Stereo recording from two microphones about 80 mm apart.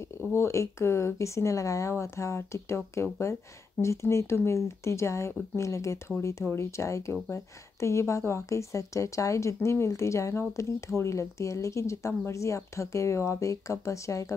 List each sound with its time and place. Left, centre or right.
0.2 s speech: left